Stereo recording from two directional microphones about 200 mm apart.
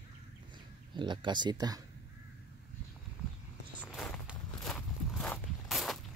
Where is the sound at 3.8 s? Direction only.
5° left (ahead or behind).